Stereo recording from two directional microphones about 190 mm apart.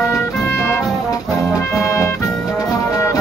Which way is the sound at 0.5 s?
15° left (ahead or behind).